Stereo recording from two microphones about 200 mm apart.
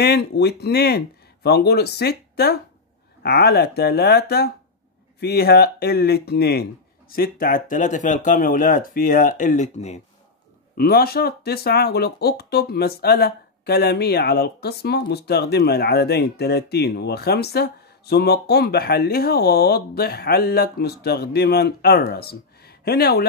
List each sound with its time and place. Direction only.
0.0 s speech: 55° left (ahead or behind); by 10.0 s 35° left (ahead or behind)
10.8 s speech: 50° left (ahead or behind)